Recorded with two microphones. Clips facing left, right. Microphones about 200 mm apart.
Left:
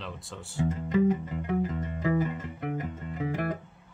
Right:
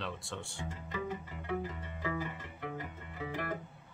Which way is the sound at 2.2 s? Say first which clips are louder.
Left 9 dB; 20° left (ahead or behind).